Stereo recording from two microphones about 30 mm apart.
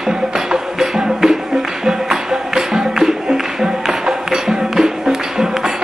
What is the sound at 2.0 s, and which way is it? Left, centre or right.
Music, centre.